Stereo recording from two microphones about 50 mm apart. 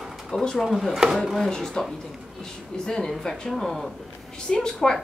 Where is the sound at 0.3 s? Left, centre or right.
Centre.